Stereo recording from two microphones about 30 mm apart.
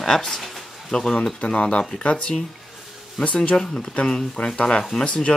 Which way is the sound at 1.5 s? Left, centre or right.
Left.